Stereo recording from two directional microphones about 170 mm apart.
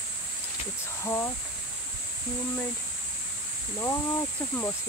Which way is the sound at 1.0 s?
15° left (ahead or behind).